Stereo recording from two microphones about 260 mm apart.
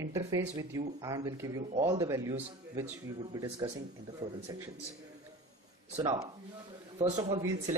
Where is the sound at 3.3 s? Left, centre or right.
Right.